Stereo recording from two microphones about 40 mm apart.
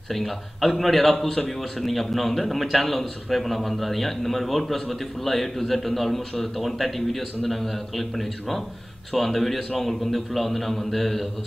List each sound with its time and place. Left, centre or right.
0.1 s a man's voice: centre